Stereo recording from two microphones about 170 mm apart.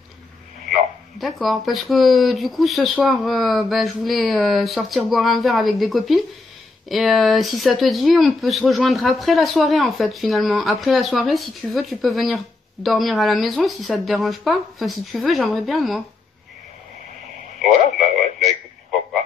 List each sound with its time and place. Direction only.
0.7 s a sound: centre (ahead or behind)
1.4 s speech: centre (ahead or behind)
18.4 s radio: centre (ahead or behind)